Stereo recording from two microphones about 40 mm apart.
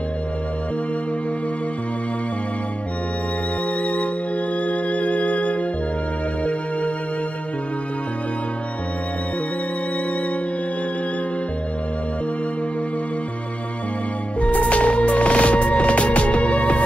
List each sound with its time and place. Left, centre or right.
3.8 s music: left
14.4 s music: left